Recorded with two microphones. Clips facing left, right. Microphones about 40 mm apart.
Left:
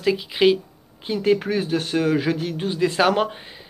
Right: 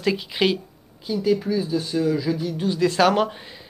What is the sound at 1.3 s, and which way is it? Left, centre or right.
Speech, left.